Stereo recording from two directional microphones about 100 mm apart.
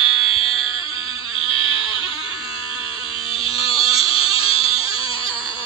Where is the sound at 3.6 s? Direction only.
70° left (ahead or behind).